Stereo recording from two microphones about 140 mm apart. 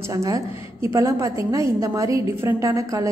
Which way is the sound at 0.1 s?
25° right (ahead or behind).